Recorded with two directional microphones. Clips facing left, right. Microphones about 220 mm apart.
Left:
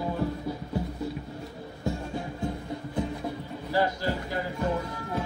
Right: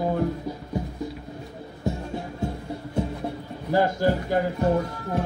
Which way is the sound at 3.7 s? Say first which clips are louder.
Right 6 dB; 50° right (ahead or behind).